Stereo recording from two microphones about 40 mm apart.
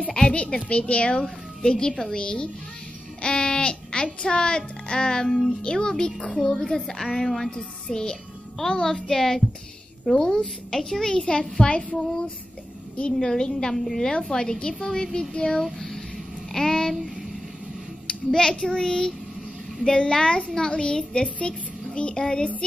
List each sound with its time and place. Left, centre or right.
0.0 s a child's voice: left; by 7.5 s centre
7.5 s a child's voice: centre
13.2 s a child's voice: centre
13.7 s a woman's voice: centre
14.3 s a child's voice: centre
15.6 s speech: centre
16.5 s a sound: centre
18.0 s a child's voice: centre